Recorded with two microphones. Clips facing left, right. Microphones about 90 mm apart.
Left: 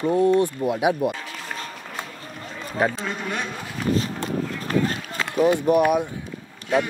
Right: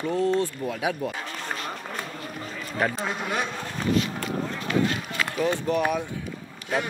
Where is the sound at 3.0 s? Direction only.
5° right (ahead or behind).